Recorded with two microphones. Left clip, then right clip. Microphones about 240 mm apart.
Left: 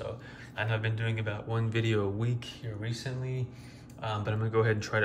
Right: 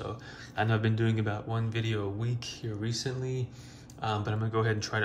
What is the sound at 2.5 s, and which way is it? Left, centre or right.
Speech, centre.